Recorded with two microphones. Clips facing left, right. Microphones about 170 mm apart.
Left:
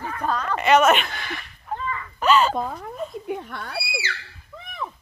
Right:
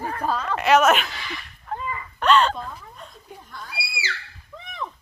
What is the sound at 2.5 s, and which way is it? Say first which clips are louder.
Speech: left 8 dB; 70° left (ahead or behind).